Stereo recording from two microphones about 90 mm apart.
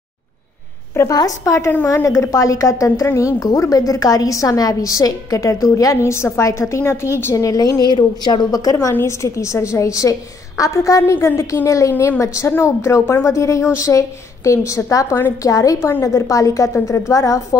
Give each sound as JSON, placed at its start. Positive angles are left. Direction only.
{"t": 1.1, "sound": "a woman's voice", "side_deg": 40}
{"t": 7.8, "sound": "a woman's voice", "side_deg": 55}
{"t": 11.9, "sound": "a woman's voice", "side_deg": 25}